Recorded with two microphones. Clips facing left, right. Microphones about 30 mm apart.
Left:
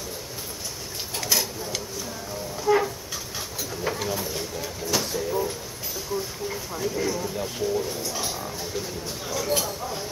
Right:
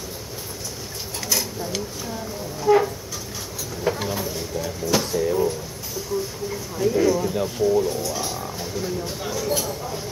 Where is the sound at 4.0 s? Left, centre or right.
Centre.